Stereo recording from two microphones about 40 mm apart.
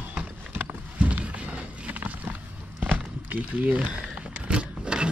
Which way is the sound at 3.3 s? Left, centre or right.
Right.